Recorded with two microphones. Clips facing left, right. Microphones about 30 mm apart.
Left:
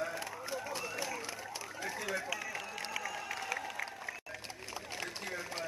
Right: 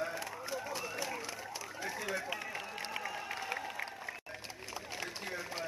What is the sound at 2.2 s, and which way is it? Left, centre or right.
Speech, right.